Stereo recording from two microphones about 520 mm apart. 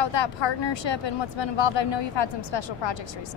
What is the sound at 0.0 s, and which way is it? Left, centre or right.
Speech, left.